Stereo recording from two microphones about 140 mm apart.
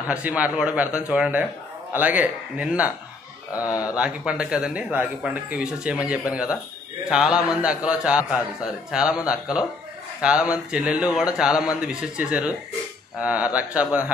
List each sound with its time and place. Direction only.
0.1 s speech: 10° right (ahead or behind)
3.5 s speech: 25° left (ahead or behind)
3.8 s speech: 10° right (ahead or behind)